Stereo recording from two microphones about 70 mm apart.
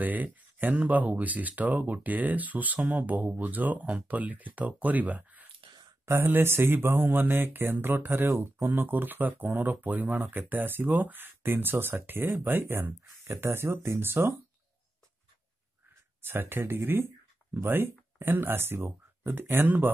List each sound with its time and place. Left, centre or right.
0.0 s a sound: right
0.7 s speech: right
6.0 s speech: right
16.2 s speech: right